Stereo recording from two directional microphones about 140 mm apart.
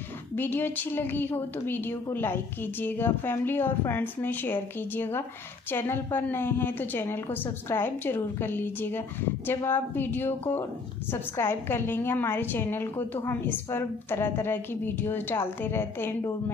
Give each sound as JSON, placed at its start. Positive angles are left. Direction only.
{"t": 0.4, "sound": "a woman's voice", "side_deg": 15}